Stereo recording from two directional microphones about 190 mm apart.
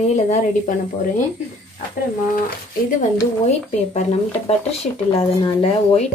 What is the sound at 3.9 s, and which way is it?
Speech, 35° left (ahead or behind).